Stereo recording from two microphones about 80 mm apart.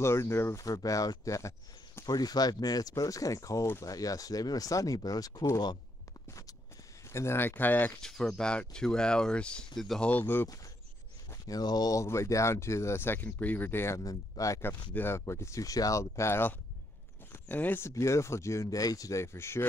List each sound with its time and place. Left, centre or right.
0.0 s speech: left
0.6 s speech: left
2.0 s speech: left
6.2 s a sound: left
7.1 s speech: left
8.0 s speech: centre
10.0 s speech: left
11.4 s speech: left
12.0 s speech: left
13.9 s speech: left
14.9 s speech: left
17.3 s a sound: left
17.8 s speech: left